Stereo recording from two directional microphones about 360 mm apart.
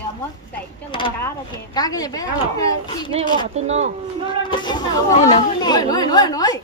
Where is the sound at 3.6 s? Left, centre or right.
Centre.